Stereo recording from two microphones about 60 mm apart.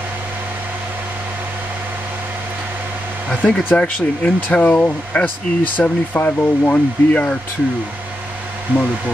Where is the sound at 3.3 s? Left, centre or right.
Centre.